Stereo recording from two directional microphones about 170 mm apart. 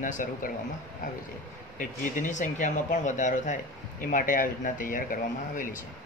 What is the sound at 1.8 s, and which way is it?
Speech, 50° left (ahead or behind).